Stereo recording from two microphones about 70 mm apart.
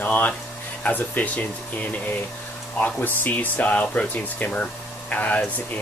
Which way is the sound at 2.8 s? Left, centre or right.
Left.